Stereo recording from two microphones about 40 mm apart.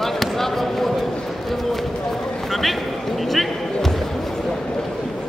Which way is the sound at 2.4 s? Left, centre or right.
Centre.